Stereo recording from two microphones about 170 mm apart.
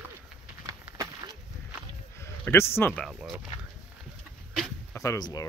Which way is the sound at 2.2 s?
15° left (ahead or behind).